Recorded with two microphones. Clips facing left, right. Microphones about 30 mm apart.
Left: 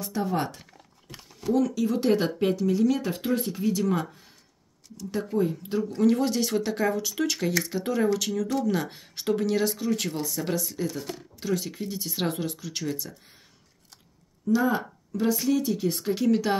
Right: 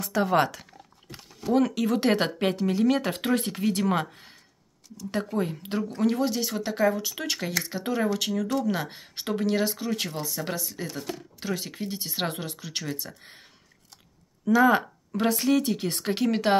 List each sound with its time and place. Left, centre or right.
0.0 s speech: right
1.5 s speech: right
2.3 s speech: right
5.9 s speech: centre
11.3 s speech: right
14.4 s speech: right
15.5 s speech: right